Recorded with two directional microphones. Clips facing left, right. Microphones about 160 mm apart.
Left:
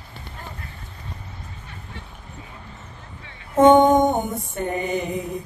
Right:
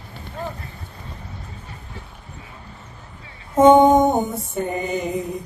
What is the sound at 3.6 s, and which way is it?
Mantra, 10° right (ahead or behind).